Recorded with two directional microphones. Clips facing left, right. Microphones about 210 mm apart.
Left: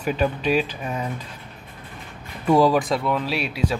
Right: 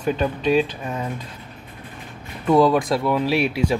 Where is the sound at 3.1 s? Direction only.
10° right (ahead or behind).